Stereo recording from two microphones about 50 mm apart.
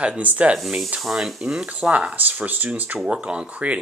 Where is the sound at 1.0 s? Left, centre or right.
Centre.